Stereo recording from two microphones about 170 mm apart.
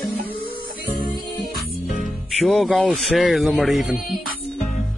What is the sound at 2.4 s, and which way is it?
Speech, centre (ahead or behind).